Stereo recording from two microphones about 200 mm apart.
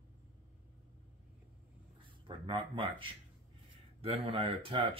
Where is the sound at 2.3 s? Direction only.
25° right (ahead or behind).